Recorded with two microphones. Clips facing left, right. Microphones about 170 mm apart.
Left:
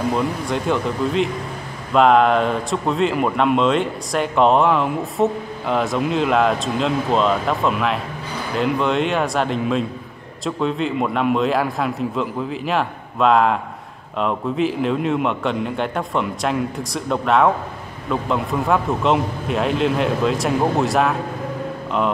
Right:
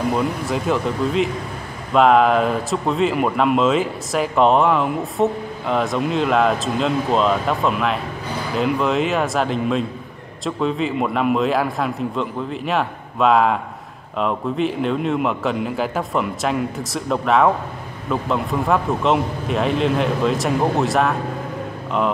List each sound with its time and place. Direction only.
0.1 s speech: centre (ahead or behind)